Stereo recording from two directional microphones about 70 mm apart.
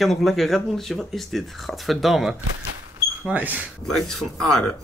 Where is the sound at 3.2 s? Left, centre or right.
Right.